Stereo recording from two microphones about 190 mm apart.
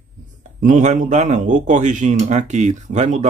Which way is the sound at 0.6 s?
40° right (ahead or behind).